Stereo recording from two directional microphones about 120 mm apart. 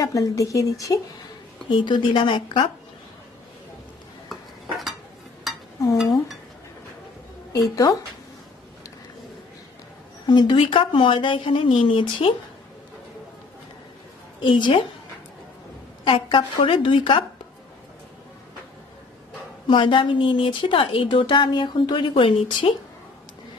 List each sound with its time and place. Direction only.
0.0 s speech: 30° left (ahead or behind)
1.7 s a woman's voice: 40° left (ahead or behind)
4.3 s cutlery: centre (ahead or behind)
7.5 s speech: 30° left (ahead or behind)
10.2 s a woman's voice: 35° left (ahead or behind)
14.4 s a woman's voice: 40° left (ahead or behind)
16.0 s a woman's voice: 45° left (ahead or behind)
19.7 s a woman's voice: 40° left (ahead or behind)